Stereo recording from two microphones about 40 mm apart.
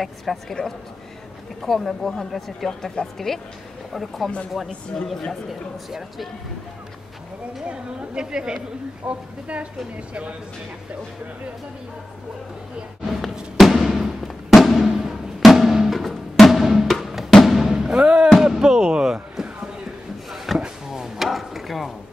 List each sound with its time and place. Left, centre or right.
0.0 s a woman's voice: centre
1.6 s a woman's voice: centre
4.9 s speech: centre
5.5 s speech: centre
7.6 s a woman's voice: right
9.0 s a woman's voice: right
13.1 s music: centre
15.4 s drum: centre
16.9 s music: centre
20.2 s drawer open or close: centre
20.8 s a sound: centre